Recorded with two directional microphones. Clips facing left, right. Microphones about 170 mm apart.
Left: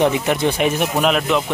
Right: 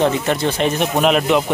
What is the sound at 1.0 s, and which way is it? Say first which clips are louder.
Speech: right 3 dB; centre (ahead or behind).